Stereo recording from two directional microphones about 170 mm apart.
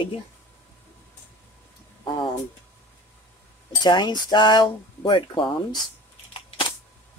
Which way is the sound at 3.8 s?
25° left (ahead or behind).